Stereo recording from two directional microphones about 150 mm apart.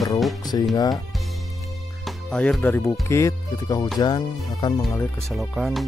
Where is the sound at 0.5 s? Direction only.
30° left (ahead or behind).